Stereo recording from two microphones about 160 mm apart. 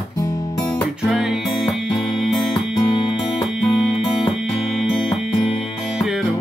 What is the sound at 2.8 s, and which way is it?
Music, 30° left (ahead or behind).